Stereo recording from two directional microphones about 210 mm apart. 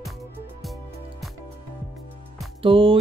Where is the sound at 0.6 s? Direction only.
Centre (ahead or behind).